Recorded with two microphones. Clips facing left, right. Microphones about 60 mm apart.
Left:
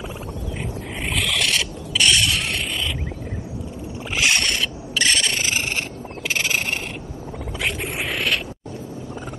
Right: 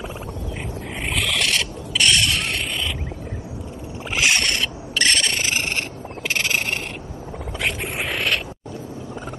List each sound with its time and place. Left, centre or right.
1.1 s a sound: centre
4.2 s rub: centre
6.2 s frog: centre
7.6 s vehicle: centre